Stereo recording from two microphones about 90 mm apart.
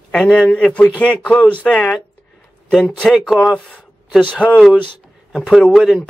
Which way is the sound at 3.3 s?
10° left (ahead or behind).